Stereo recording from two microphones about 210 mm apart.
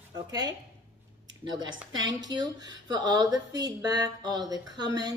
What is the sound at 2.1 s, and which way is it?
Speech, 20° right (ahead or behind).